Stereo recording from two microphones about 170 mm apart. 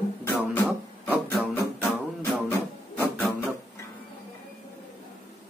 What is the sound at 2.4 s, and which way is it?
Printer, 10° left (ahead or behind).